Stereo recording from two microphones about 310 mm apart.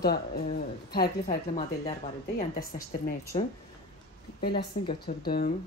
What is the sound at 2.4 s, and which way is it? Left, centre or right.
Speech, centre.